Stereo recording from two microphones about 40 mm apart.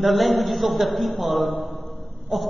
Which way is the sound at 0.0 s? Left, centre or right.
Centre.